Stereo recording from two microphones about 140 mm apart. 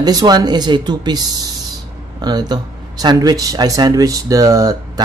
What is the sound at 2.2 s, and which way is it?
Speech, 30° right (ahead or behind).